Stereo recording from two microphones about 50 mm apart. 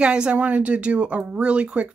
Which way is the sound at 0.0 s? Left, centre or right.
Centre.